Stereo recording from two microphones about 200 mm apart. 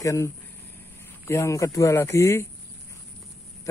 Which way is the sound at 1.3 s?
15° left (ahead or behind).